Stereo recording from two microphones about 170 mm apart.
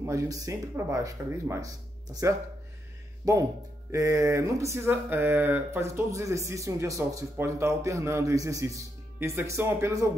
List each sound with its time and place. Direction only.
0.0 s speech: 20° right (ahead or behind)
3.3 s speech: 20° right (ahead or behind)